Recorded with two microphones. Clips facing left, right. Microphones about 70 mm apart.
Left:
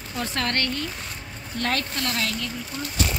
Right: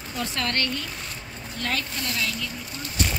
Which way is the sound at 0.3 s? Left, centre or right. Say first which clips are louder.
Left 2 dB; left.